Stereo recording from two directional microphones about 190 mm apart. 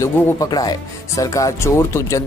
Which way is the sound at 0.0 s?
20° left (ahead or behind).